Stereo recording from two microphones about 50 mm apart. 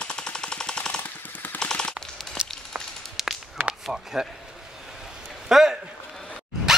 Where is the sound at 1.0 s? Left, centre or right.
Left.